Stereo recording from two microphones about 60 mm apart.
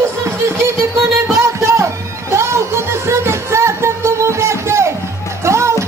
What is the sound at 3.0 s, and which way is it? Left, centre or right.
Music, right.